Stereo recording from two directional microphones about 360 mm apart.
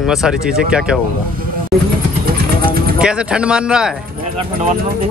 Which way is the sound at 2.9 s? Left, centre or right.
Centre.